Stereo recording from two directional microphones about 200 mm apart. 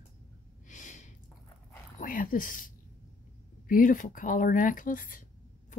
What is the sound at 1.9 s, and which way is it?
Speech, 45° left (ahead or behind).